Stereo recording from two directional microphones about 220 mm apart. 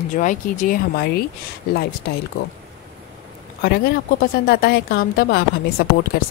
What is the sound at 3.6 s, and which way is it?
Speech, 45° left (ahead or behind).